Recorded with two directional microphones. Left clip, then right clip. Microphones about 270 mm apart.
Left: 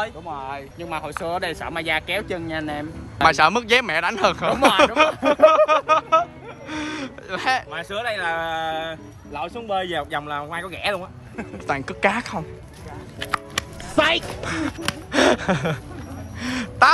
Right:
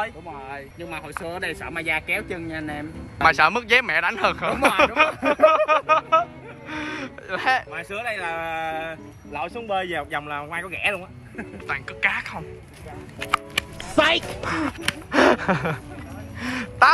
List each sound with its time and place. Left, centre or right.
0.8 s speech: centre
13.9 s speech: centre
16.3 s a sound: centre